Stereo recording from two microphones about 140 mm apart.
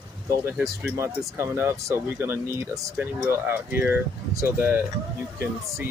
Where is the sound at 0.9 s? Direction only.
20° right (ahead or behind).